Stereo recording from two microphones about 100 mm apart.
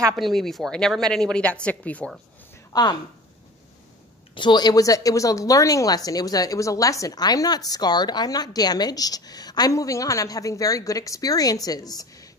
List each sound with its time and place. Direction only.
0.1 s speech: 5° left (ahead or behind)
2.7 s speech: 45° left (ahead or behind)
4.4 s a woman's voice: 50° left (ahead or behind)